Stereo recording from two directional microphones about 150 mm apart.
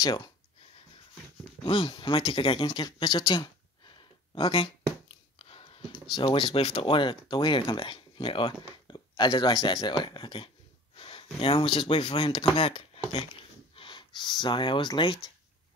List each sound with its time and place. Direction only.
0.0 s speech: 30° left (ahead or behind)
1.6 s speech: 35° left (ahead or behind)
5.0 s a sound: 40° left (ahead or behind)
6.1 s speech: 35° left (ahead or behind)
11.0 s a sound: 40° left (ahead or behind)
11.3 s speech: 35° left (ahead or behind)